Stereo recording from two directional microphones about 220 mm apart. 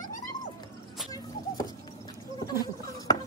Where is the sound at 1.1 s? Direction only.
15° left (ahead or behind).